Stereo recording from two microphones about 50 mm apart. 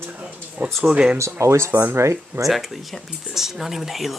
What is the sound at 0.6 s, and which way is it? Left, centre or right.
Speech, right.